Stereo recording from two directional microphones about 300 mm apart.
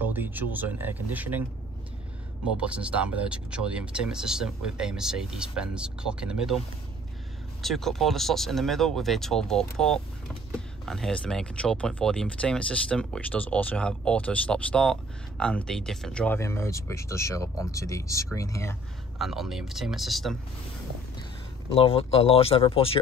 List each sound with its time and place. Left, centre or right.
0.0 s speech: centre
2.5 s speech: centre
7.6 s speech: centre
19.1 s speech: centre
21.6 s speech: centre